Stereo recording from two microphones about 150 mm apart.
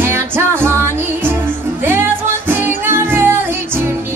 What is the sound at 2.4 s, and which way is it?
Music, 15° right (ahead or behind).